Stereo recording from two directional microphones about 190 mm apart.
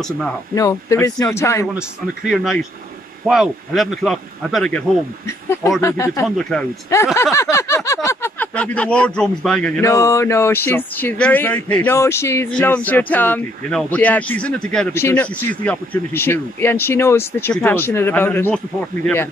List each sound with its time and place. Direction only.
0.6 s speech: 15° left (ahead or behind)
2.3 s a man's voice: centre (ahead or behind)
5.8 s speech: 15° left (ahead or behind)
6.2 s a man's voice: 5° left (ahead or behind)
6.9 s speech: 15° left (ahead or behind)